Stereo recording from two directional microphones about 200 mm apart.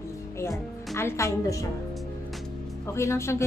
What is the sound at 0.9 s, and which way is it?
Speech, 15° left (ahead or behind).